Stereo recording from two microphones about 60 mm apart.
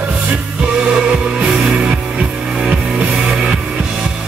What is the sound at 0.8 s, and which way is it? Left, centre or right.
Music, centre.